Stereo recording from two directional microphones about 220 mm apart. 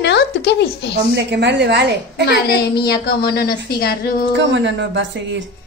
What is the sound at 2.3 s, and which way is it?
A woman's voice, 45° left (ahead or behind).